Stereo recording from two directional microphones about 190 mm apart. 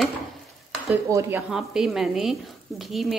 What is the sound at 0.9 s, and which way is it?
Speech, 15° right (ahead or behind).